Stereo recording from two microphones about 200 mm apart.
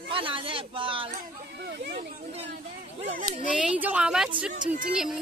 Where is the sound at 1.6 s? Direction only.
55° right (ahead or behind).